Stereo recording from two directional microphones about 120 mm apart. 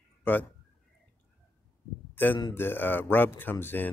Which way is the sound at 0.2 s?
15° left (ahead or behind).